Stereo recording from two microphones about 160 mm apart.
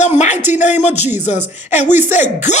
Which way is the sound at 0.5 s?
50° left (ahead or behind).